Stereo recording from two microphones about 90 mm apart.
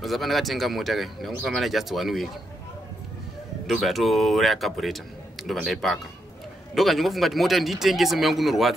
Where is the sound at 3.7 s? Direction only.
Centre (ahead or behind).